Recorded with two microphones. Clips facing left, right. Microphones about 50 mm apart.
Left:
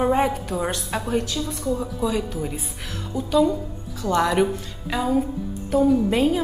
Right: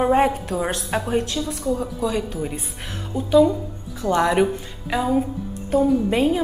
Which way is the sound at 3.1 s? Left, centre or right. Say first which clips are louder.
Right 4 dB; right.